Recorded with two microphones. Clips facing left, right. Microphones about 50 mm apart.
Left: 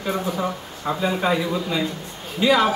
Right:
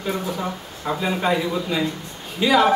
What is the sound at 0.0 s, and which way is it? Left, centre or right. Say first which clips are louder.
Speech: left 1 dB; centre.